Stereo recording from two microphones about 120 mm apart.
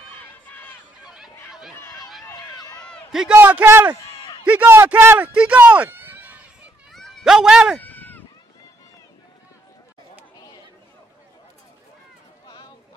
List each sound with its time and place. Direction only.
0.1 s crowd: 15° left (ahead or behind)
1.0 s a sound: 5° right (ahead or behind)
2.2 s run: 30° left (ahead or behind)
3.1 s a sound: 5° right (ahead or behind)
3.3 s a man's voice: 15° right (ahead or behind)
5.3 s a sound: 10° right (ahead or behind)
6.9 s cat: centre (ahead or behind)
7.8 s bleat: 15° left (ahead or behind)
10.3 s chatter: 30° left (ahead or behind)